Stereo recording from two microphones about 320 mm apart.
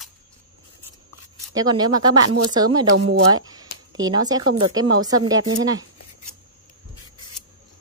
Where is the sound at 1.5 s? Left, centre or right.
Centre.